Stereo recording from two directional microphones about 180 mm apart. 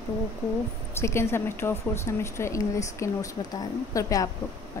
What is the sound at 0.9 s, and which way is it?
A woman's voice, 15° left (ahead or behind).